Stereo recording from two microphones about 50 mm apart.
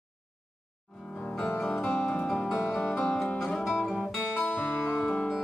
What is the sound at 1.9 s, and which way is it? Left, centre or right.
Music, left.